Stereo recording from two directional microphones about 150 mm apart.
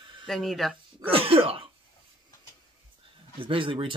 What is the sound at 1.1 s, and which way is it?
Speech, 40° right (ahead or behind).